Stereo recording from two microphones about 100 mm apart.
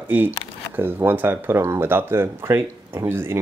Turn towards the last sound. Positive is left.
turn(degrees=-25)  # may be behind; listen again after turning